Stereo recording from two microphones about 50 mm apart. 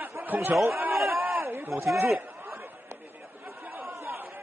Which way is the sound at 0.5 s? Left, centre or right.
Right.